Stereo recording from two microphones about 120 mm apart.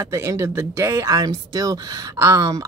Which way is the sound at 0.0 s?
25° right (ahead or behind).